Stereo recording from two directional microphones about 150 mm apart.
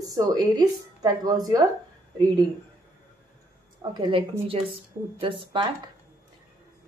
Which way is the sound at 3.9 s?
30° right (ahead or behind).